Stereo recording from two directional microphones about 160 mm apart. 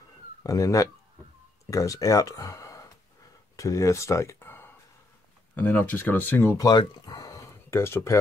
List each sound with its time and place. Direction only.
0.4 s speech: 20° left (ahead or behind)